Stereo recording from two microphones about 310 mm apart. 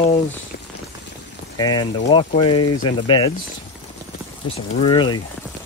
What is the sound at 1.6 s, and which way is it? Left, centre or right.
Speech, centre.